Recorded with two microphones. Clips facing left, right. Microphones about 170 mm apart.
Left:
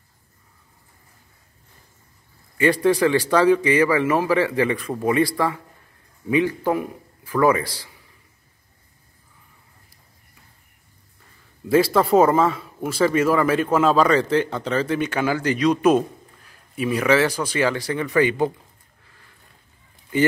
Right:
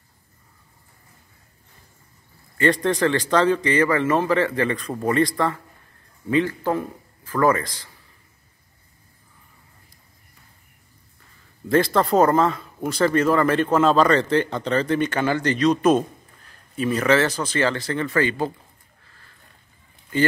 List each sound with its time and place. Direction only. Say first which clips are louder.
2.5 s a man's voice: left 2 dB; 10° left (ahead or behind)
11.7 s a man's voice: left 2 dB; 5° left (ahead or behind)
19.0 s a sound: left 1 dB; 15° left (ahead or behind)